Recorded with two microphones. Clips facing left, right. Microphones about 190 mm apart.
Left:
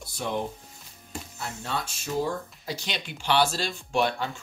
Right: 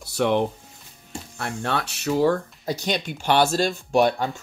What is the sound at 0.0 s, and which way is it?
Speech, 75° right (ahead or behind).